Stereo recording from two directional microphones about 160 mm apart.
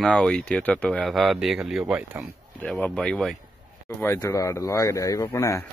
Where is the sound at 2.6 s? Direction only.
10° left (ahead or behind).